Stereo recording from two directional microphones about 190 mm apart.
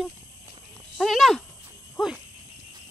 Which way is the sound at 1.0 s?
Centre (ahead or behind).